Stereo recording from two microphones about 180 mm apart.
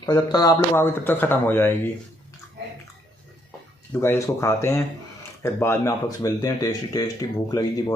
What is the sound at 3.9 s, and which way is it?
Speech, 15° left (ahead or behind).